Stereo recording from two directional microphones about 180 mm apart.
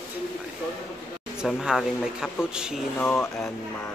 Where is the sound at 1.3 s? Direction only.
5° right (ahead or behind).